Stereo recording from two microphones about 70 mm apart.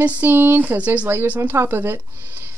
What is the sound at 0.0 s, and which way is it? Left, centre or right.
Speech, right.